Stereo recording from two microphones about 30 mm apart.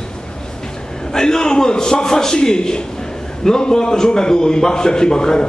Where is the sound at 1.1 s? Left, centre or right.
Left.